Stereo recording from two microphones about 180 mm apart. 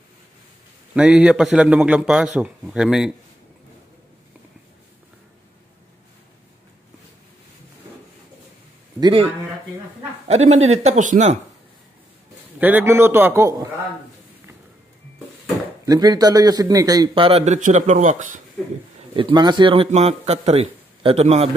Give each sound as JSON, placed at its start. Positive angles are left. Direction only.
{"t": 0.9, "sound": "a man's voice", "side_deg": -5}
{"t": 9.0, "sound": "a man's voice", "side_deg": -30}
{"t": 12.5, "sound": "a man's voice", "side_deg": -10}
{"t": 15.8, "sound": "a man's voice", "side_deg": -20}
{"t": 19.1, "sound": "a man's voice", "side_deg": -25}